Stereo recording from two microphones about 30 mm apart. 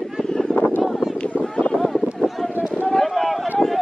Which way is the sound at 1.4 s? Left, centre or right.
Left.